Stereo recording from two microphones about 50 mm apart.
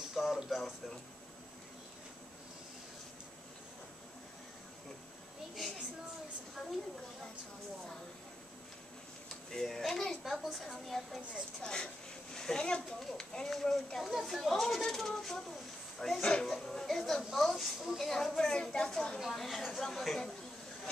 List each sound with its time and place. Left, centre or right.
0.1 s a sound: centre
0.5 s speech: centre
5.6 s a sound: centre
9.5 s a child's voice: centre
11.6 s a woman's voice: centre
19.1 s speech: centre